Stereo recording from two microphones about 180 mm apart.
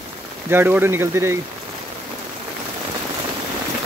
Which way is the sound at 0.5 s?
10° right (ahead or behind).